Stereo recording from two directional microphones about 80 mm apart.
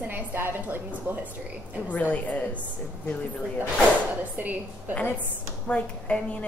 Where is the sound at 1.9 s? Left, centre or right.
Centre.